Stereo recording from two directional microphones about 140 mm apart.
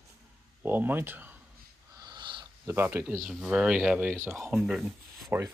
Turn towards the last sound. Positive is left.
turn(degrees=0)  # may be behind; listen again after turning